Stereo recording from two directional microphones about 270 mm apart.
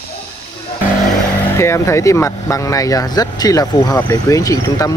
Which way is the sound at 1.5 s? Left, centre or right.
Centre.